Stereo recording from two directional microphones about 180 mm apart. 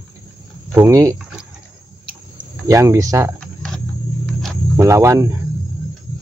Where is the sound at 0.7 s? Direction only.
15° right (ahead or behind).